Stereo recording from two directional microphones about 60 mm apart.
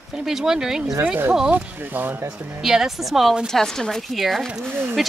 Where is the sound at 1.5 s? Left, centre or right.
Right.